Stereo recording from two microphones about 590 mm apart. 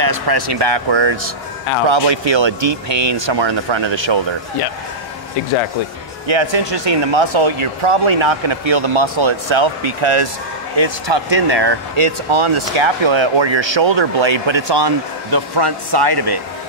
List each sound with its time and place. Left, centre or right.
0.0 s speech: right
6.2 s speech: right
10.8 s speech: right